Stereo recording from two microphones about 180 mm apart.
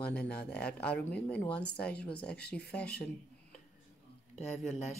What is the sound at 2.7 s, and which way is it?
Speech, 5° left (ahead or behind).